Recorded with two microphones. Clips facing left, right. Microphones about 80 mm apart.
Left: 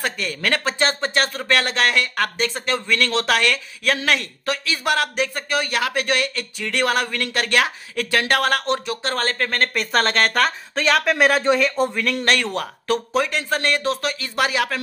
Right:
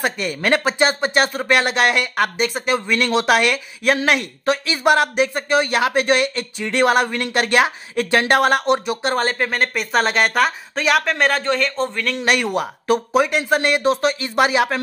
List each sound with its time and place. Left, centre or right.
0.0 s a man's voice: centre
12.3 s speech: centre